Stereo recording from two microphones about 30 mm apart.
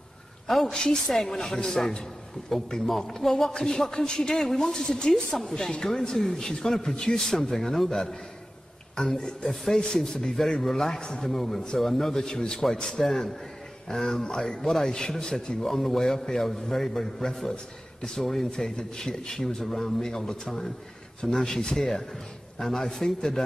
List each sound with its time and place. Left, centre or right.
0.5 s a man's voice: centre
1.1 s speech: centre
2.8 s a man's voice: centre; by 7.4 s left
7.4 s a man's voice: centre
9.4 s a man's voice: centre
11.0 s speech: left
11.2 s a man's voice: centre
12.4 s a man's voice: left; by 14.9 s centre
14.9 s speech: left
15.6 s a man's voice: centre
18.8 s a man's voice: left
21.7 s a man's voice: centre